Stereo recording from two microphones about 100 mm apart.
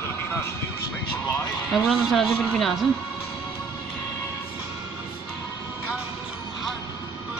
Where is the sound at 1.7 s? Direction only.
Centre (ahead or behind).